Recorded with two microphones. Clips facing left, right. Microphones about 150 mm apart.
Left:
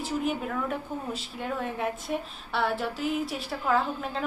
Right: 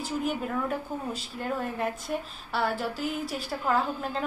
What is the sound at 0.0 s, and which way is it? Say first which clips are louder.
A woman's voice: left 1 dB; centre (ahead or behind).